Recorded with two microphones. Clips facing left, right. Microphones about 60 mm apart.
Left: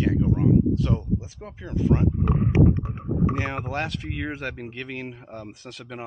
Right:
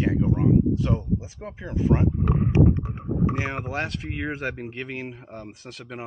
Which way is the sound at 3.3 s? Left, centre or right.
Centre.